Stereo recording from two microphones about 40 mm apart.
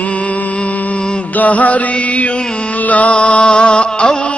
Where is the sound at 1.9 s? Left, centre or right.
Left.